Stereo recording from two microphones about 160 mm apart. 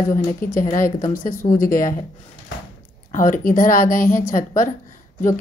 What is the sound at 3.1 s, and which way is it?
A woman's voice, 55° left (ahead or behind).